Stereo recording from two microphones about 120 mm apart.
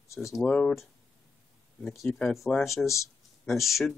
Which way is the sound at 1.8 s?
5° left (ahead or behind).